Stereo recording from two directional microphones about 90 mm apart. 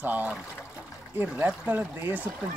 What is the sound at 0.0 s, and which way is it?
Speech, 20° right (ahead or behind).